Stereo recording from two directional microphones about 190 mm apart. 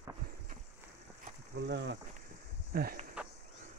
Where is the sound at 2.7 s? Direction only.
50° right (ahead or behind).